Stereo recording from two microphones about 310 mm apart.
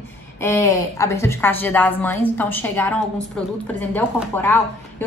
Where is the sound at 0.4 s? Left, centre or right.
Centre.